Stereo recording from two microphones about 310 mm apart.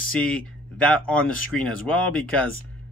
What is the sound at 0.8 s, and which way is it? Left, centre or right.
Speech, centre.